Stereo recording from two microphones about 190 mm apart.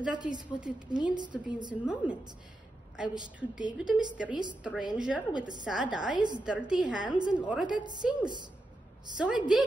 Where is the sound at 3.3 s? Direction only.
5° right (ahead or behind).